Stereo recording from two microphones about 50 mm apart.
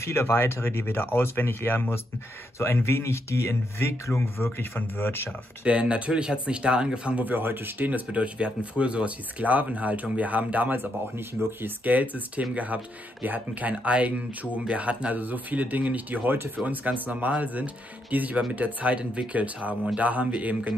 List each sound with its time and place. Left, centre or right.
0.0 s speech: left
4.6 s speech: left
5.6 s speech: right
7.2 s speech: right
7.8 s speech: right
8.2 s speech: right
10.8 s speech: right
11.8 s speech: right